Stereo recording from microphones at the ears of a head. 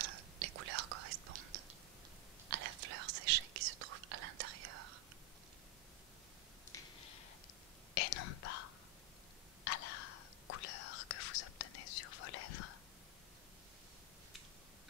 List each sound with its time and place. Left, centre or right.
0.0 s whispering: right
6.7 s a sound: left
7.9 s whispering: left